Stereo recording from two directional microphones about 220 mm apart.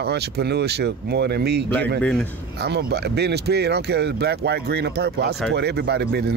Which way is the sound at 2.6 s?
50° right (ahead or behind).